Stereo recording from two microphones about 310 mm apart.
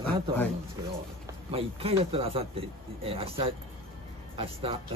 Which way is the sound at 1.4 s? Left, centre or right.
Centre.